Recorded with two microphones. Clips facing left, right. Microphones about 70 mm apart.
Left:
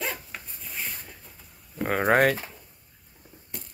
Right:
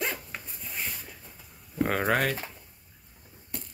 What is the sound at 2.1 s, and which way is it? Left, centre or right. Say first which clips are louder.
Speech: left 11 dB; left.